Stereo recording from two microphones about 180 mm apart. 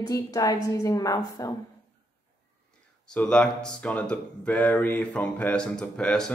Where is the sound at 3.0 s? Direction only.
5° left (ahead or behind).